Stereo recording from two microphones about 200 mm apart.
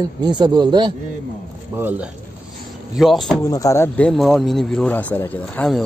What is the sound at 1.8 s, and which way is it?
Speech, 10° right (ahead or behind).